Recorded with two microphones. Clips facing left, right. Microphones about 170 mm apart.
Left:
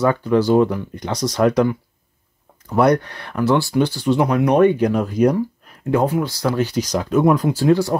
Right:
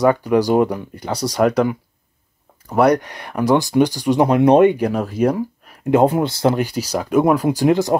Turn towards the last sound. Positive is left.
turn(degrees=-15)  # may be behind; listen again after turning